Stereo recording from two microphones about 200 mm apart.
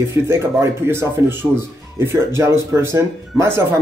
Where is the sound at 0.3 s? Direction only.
10° right (ahead or behind).